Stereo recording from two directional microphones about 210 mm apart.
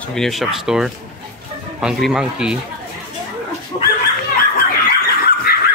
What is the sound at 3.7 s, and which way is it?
Dog, 20° left (ahead or behind).